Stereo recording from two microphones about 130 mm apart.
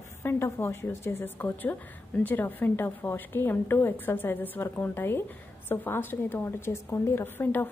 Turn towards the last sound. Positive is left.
turn(degrees=15)  # may be behind; listen again after turning